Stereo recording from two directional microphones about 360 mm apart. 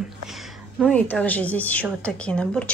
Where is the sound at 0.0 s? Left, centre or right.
Centre.